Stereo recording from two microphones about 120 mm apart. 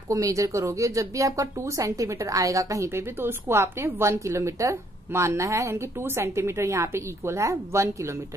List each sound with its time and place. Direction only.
0.1 s speech: 25° right (ahead or behind)